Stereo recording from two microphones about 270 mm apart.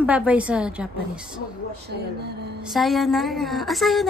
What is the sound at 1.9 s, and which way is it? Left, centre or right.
Speech, right.